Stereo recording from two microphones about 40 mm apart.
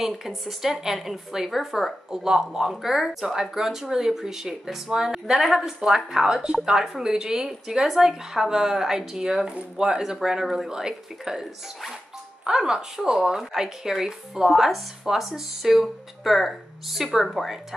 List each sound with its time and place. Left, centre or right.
0.0 s a woman's voice: centre
2.0 s a woman's voice: centre
12.4 s a woman's voice: centre